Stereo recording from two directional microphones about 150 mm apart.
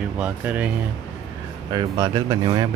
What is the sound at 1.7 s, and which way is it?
Speech, 25° right (ahead or behind).